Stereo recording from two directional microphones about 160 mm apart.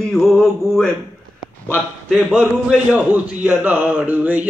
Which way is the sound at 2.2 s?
5° right (ahead or behind).